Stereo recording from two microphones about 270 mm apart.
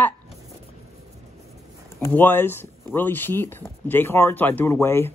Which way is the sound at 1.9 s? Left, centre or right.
Centre.